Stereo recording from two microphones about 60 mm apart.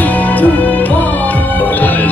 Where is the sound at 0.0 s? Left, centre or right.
Left.